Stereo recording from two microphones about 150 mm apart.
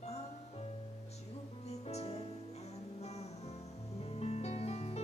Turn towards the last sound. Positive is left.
turn(degrees=45)  # may be behind; listen again after turning